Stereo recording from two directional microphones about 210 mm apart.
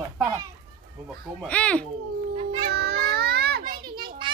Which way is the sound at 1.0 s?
5° left (ahead or behind).